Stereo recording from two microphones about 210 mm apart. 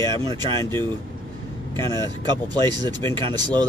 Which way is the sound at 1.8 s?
20° right (ahead or behind).